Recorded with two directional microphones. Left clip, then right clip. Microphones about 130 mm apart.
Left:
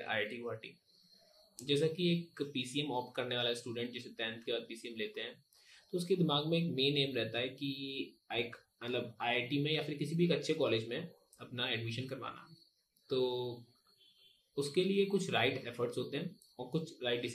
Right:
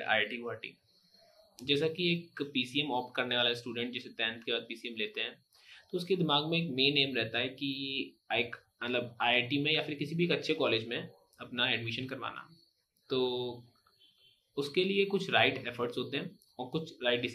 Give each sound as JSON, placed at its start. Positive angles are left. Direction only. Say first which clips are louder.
{"t": 0.0, "sound": "speech", "louder": "right 6 dB", "side_deg": 25}